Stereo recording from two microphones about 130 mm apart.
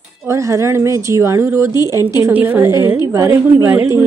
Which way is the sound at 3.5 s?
10° right (ahead or behind).